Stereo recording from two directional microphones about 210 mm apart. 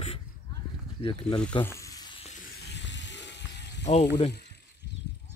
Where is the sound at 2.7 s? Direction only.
60° left (ahead or behind).